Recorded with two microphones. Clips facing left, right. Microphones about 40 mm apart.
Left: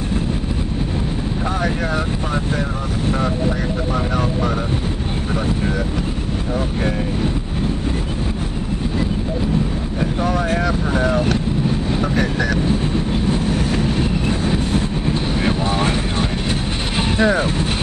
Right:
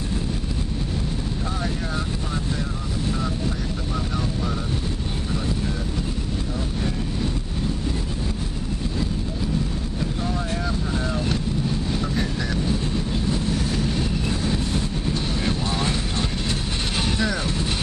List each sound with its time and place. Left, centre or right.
10.9 s vehicle: left
17.2 s speech: left